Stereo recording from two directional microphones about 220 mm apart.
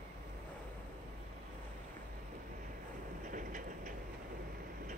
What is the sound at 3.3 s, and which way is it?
Train, 35° right (ahead or behind).